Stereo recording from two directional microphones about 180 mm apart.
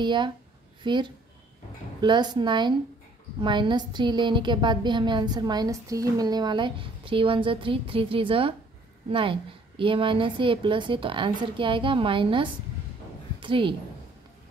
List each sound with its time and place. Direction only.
0.0 s a woman's voice: 25° right (ahead or behind)